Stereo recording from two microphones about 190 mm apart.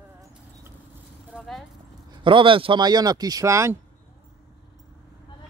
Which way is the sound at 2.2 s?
25° right (ahead or behind).